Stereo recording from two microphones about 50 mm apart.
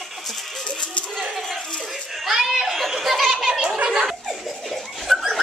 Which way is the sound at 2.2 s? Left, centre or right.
Centre.